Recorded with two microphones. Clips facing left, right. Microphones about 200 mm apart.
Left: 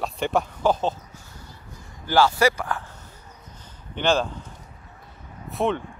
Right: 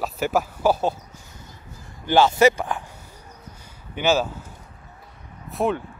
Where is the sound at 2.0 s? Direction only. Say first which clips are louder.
Right 3 dB; 20° right (ahead or behind).